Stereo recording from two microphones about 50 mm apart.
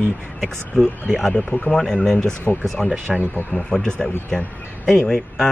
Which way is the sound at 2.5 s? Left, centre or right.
Left.